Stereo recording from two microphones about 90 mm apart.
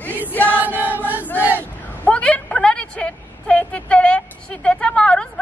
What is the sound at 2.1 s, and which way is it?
Vehicle, 15° left (ahead or behind).